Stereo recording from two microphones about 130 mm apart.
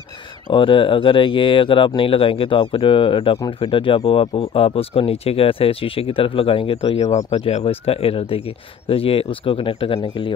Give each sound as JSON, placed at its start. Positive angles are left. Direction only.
{"t": 0.5, "sound": "speech", "side_deg": 40}